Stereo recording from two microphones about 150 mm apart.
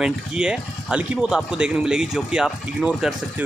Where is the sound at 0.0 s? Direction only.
5° right (ahead or behind).